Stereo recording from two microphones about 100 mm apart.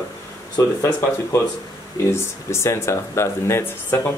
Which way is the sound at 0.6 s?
25° left (ahead or behind).